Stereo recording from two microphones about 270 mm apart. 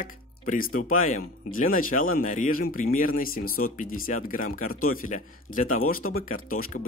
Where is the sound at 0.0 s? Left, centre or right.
Left.